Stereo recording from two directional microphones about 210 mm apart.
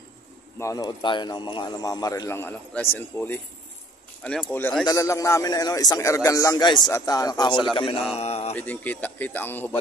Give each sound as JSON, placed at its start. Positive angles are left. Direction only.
{"t": 0.6, "sound": "speech", "side_deg": 15}
{"t": 8.2, "sound": "mantra", "side_deg": 30}
{"t": 8.5, "sound": "speech", "side_deg": 10}